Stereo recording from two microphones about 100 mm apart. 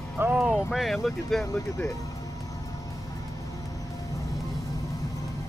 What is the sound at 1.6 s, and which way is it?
Speech, 30° left (ahead or behind).